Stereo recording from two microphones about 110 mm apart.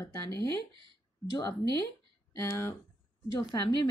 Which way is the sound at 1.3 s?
35° left (ahead or behind).